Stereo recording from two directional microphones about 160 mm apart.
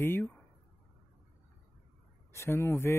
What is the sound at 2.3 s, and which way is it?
Speech, 15° left (ahead or behind).